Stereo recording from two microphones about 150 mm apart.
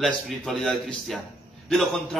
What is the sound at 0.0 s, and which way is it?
A man's voice, centre (ahead or behind).